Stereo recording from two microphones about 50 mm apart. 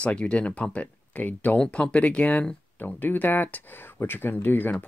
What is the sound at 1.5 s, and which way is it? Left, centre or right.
Speech, centre.